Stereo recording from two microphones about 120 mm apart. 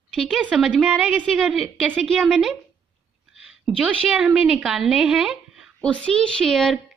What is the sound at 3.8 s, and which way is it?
A woman's voice, 10° right (ahead or behind).